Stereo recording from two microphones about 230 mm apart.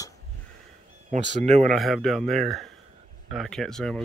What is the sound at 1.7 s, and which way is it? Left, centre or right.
Speech, centre.